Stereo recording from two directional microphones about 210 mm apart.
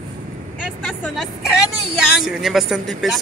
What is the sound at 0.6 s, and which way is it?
Vehicle, 5° right (ahead or behind).